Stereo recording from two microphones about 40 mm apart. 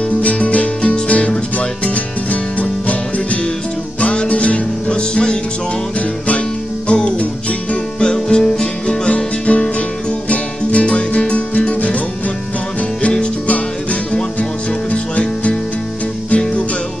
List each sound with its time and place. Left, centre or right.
0.2 s music: left
14.9 s music: left